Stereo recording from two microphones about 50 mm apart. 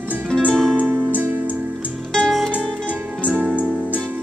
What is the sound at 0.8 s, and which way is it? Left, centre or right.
Music, right.